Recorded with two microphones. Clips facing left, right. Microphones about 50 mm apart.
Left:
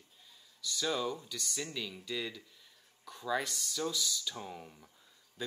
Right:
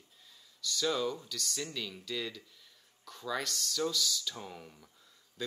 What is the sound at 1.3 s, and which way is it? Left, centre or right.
Speech, centre.